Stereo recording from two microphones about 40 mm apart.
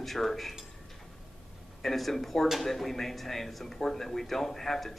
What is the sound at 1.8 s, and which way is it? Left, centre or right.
A man's voice, centre.